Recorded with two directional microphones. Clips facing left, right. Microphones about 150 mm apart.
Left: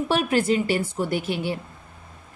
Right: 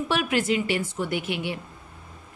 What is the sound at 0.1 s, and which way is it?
A woman's voice, 35° left (ahead or behind).